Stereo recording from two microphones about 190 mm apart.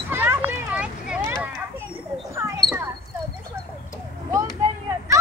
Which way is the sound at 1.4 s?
10° right (ahead or behind).